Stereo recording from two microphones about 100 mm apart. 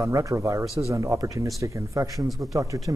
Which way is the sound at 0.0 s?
30° right (ahead or behind).